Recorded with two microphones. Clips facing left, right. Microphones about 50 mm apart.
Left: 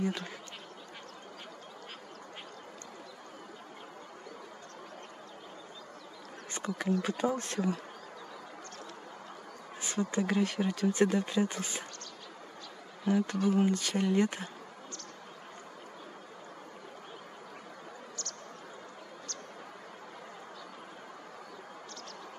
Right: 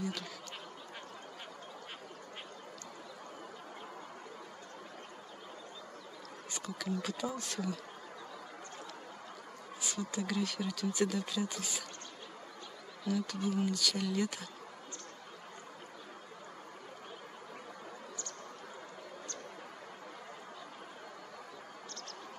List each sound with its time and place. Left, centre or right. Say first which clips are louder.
0.0 s speech: left 5 dB; left
6.5 s speech: left 7 dB; left
9.8 s speech: left 6 dB; left
13.0 s speech: left 6 dB; left